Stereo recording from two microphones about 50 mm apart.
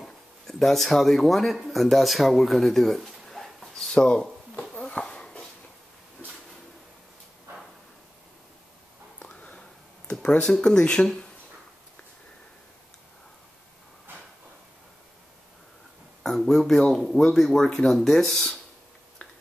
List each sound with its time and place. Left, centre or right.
0.0 s speech: centre
3.2 s a sound: centre
5.0 s dog: centre
9.2 s a sound: centre
10.4 s speech: centre
16.2 s speech: centre